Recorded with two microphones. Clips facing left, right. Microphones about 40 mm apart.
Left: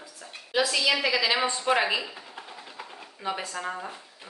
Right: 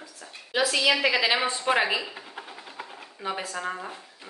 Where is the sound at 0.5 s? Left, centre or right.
Centre.